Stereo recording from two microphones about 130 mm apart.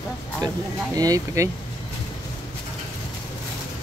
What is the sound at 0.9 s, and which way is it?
Speech, 25° right (ahead or behind).